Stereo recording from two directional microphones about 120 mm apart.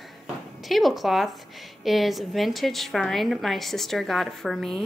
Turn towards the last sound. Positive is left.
turn(degrees=0)  # may be behind; listen again after turning